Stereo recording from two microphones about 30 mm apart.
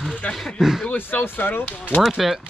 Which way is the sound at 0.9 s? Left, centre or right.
Left.